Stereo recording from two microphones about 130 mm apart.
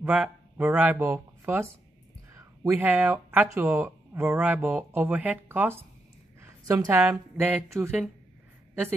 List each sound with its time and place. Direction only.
0.0 s speech: 10° right (ahead or behind)
2.8 s a woman's voice: 15° right (ahead or behind)